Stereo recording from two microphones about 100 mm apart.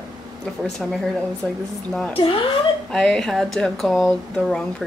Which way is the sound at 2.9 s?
5° left (ahead or behind).